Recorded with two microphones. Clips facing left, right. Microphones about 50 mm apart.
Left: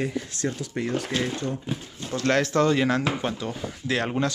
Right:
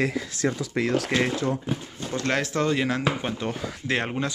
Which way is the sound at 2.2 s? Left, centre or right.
Centre.